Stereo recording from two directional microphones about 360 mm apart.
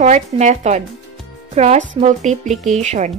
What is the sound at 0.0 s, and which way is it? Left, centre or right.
A woman's voice, centre.